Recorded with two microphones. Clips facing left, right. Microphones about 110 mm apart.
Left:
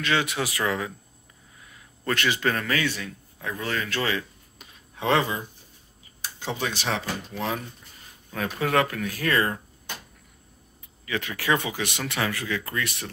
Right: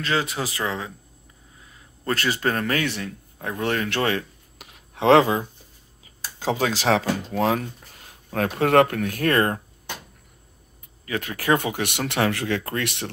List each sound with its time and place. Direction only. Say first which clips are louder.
0.0 s speech: right 1 dB; 35° right (ahead or behind)
0.7 s speech: left 1 dB; 20° right (ahead or behind)
2.1 s speech: right 1 dB; 40° right (ahead or behind)
4.6 s a sound: right 7 dB; 70° right (ahead or behind); by 5.4 s 90° right
6.6 s speech: right 8 dB; 90° right; by 9.6 s 55° right (ahead or behind)
11.1 s speech: right 3 dB; 45° right (ahead or behind); by 12.0 s 60° right (ahead or behind)
12.1 s speech: right 7 dB; 70° right (ahead or behind)